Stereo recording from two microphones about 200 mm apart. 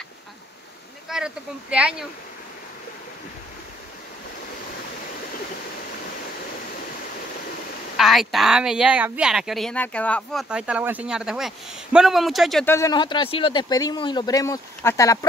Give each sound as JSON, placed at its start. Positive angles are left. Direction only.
{"t": 1.0, "sound": "speech", "side_deg": -5}
{"t": 8.0, "sound": "speech", "side_deg": 0}
{"t": 10.5, "sound": "speech", "side_deg": -5}
{"t": 12.6, "sound": "speech", "side_deg": 15}